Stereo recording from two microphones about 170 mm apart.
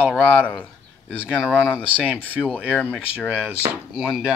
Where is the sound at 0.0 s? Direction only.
10° left (ahead or behind).